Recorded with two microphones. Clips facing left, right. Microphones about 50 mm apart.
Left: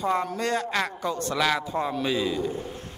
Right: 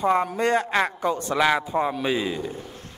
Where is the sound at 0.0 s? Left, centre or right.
Right.